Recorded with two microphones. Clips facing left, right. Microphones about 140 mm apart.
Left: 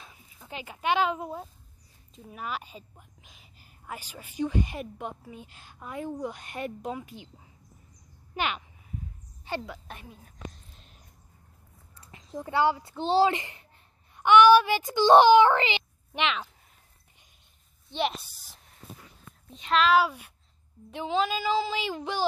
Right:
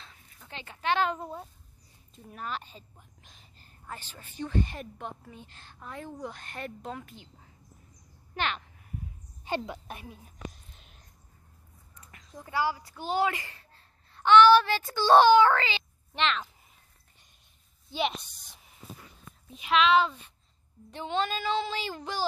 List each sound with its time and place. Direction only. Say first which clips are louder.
0.0 s a woman's voice: left 2 dB; 10° left (ahead or behind)
9.7 s a woman's voice: right 2 dB; 15° right (ahead or behind)
10.5 s whispering: left 1 dB; centre (ahead or behind)
12.0 s a child's voice: left 9 dB; 30° left (ahead or behind); by 16.4 s 10° left (ahead or behind)
17.8 s a child's voice: left 1 dB; centre (ahead or behind)